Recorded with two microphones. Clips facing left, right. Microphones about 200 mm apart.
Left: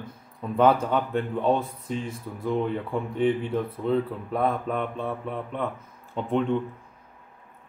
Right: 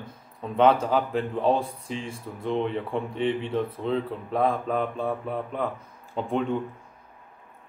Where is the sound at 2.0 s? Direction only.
25° right (ahead or behind).